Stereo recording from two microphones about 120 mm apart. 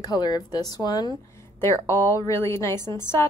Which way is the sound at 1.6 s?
20° left (ahead or behind).